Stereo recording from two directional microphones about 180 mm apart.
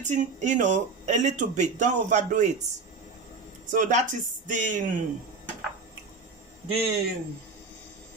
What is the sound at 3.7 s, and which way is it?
Speech, 45° right (ahead or behind).